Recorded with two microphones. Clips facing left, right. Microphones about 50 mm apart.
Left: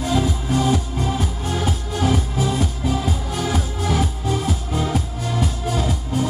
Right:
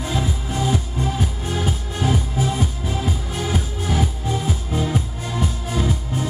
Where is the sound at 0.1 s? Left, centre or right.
Centre.